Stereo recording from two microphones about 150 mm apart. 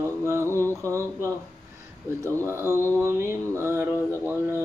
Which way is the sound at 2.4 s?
20° right (ahead or behind).